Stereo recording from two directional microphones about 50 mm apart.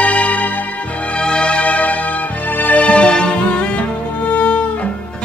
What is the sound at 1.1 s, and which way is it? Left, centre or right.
Music, centre.